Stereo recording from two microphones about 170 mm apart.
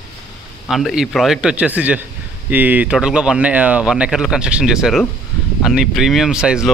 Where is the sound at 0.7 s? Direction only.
Centre (ahead or behind).